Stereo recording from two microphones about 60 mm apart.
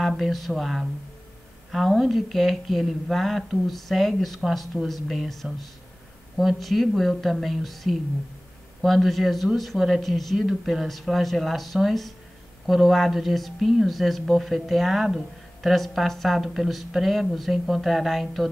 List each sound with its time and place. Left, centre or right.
0.0 s speech: centre